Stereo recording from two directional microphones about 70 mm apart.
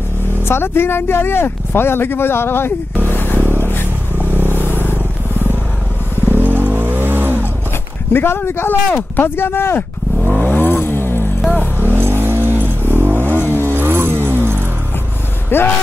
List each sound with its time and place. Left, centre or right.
0.5 s speech: left
3.1 s a sound: left
4.2 s vehicle: right
6.2 s vehicle: right
8.1 s speech: left
8.8 s speech: centre
9.2 s speech: left
10.4 s vehicle: left
11.8 s vehicle: right
13.4 s vehicle: left
13.7 s vehicle: right
15.5 s speech: left